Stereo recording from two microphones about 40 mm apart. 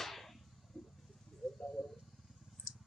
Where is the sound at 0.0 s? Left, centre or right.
Centre.